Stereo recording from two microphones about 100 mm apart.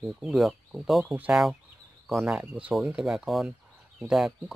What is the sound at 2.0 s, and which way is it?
Speech, 5° right (ahead or behind).